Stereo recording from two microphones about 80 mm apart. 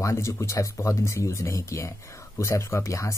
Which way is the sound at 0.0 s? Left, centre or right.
Left.